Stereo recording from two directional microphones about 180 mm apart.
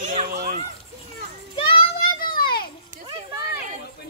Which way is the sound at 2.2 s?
55° left (ahead or behind).